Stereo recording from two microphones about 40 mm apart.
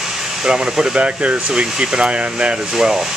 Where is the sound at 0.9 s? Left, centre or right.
Right.